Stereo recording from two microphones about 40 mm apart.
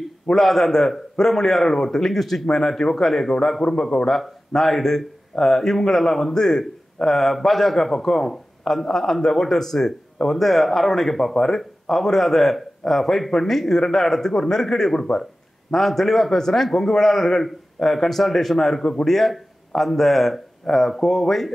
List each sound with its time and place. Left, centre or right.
0.3 s a man's voice: centre
4.6 s a man's voice: centre